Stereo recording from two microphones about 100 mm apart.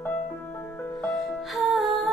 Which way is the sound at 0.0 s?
15° left (ahead or behind).